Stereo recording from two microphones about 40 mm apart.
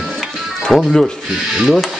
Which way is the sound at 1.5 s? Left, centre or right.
Centre.